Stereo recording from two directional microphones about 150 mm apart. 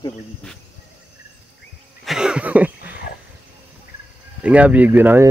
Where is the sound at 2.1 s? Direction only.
5° right (ahead or behind).